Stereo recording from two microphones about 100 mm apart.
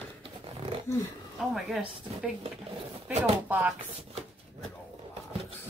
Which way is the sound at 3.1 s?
20° right (ahead or behind).